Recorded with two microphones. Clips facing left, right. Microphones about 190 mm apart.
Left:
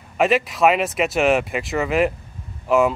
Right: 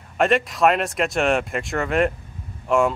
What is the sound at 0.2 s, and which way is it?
Speech, centre (ahead or behind).